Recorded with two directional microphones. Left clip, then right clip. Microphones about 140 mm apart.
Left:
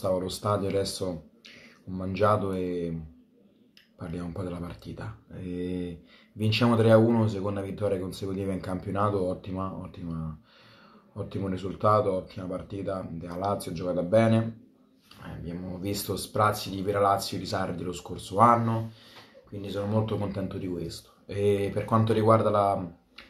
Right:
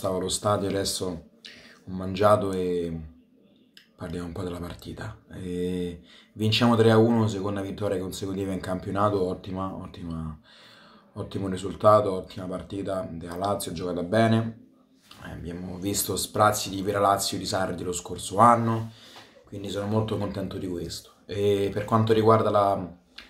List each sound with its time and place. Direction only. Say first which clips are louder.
0.0 s speech: right 2 dB; 20° right (ahead or behind)
4.0 s speech: right 2 dB; 15° right (ahead or behind)